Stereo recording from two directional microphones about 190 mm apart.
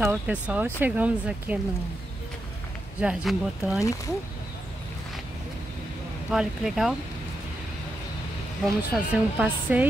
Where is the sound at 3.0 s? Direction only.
Centre (ahead or behind).